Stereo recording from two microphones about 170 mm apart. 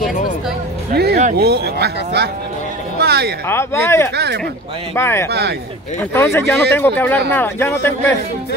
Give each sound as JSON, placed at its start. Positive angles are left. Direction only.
{"t": 0.9, "sound": "music", "side_deg": -70}
{"t": 1.4, "sound": "speech", "side_deg": -70}
{"t": 3.0, "sound": "a sound", "side_deg": -70}
{"t": 3.4, "sound": "speech", "side_deg": 15}
{"t": 4.1, "sound": "speech", "side_deg": -75}
{"t": 4.9, "sound": "speech", "side_deg": 15}